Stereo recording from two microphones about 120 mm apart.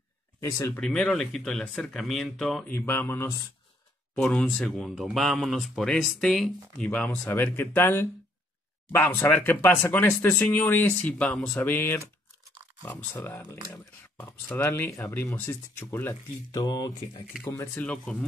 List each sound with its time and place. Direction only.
0.4 s speech: 25° left (ahead or behind)
0.7 s speech: 5° left (ahead or behind)
2.7 s speech: 15° left (ahead or behind)
4.1 s speech: 5° left (ahead or behind)
6.9 s speech: 10° left (ahead or behind)
16.5 s speech: 30° left (ahead or behind)
17.8 s speech: 5° left (ahead or behind)